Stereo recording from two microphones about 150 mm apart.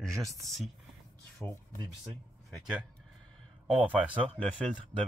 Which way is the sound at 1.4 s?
15° left (ahead or behind).